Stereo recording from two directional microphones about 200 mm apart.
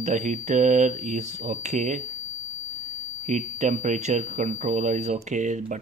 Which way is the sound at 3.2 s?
35° right (ahead or behind).